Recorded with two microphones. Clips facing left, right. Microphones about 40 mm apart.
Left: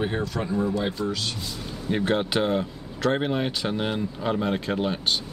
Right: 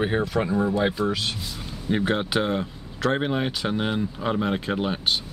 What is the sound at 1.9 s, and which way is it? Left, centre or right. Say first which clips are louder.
Speech: even; centre.